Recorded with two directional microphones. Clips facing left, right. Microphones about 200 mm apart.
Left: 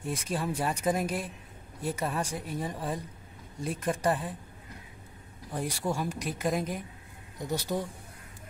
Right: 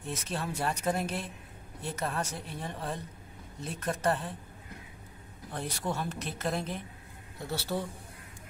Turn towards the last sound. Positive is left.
turn(degrees=15)  # may be behind; listen again after turning